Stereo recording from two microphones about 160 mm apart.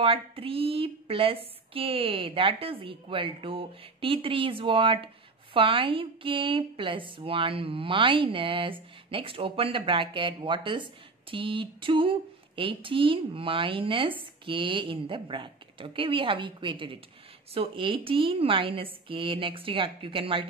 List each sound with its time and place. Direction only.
0.0 s a woman's voice: 35° right (ahead or behind)